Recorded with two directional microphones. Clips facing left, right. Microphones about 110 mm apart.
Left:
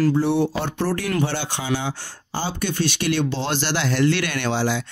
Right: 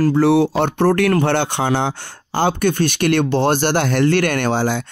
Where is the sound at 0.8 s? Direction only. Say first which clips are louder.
Right 7 dB; 55° right (ahead or behind).